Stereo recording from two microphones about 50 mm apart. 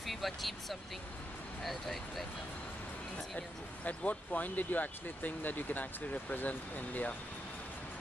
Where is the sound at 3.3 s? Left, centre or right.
Left.